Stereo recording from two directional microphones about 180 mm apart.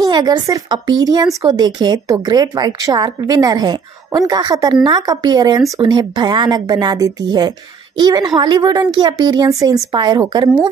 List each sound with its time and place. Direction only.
0.1 s speech: 25° right (ahead or behind)